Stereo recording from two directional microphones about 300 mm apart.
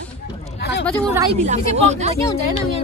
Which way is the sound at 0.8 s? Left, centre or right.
Centre.